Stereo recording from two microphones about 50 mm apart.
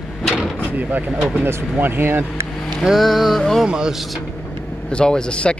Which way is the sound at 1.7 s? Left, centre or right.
Right.